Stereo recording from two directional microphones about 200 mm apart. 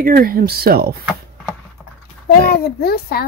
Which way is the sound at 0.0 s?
45° right (ahead or behind).